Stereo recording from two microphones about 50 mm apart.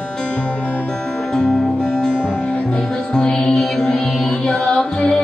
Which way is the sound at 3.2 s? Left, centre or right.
Centre.